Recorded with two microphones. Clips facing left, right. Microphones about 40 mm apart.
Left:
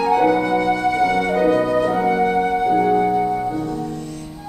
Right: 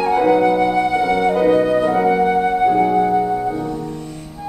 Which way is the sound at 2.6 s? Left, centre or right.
Centre.